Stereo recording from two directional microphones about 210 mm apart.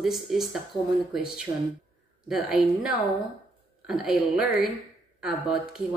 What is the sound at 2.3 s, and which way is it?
Speech, 5° right (ahead or behind).